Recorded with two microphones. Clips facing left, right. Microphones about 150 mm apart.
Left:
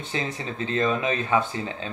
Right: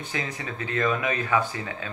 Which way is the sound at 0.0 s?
25° left (ahead or behind).